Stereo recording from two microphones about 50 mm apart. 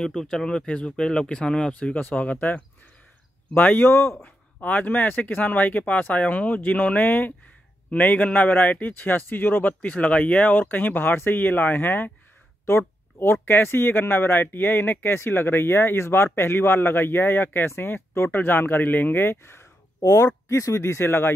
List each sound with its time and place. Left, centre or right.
0.0 s speech: centre; by 3.9 s left
3.9 s speech: left
4.2 s speech: left
9.8 s speech: left
12.6 s speech: left
20.4 s speech: left